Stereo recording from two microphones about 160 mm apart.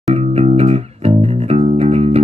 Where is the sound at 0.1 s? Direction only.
40° right (ahead or behind).